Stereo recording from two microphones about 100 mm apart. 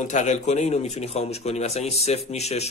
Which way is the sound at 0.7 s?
90° left.